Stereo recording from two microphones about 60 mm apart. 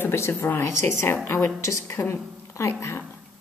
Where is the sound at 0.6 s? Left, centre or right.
Left.